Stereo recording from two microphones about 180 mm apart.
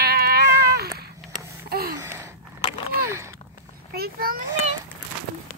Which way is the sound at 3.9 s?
60° right (ahead or behind).